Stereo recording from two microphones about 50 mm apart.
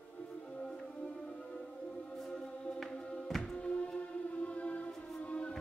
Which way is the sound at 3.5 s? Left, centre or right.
Left.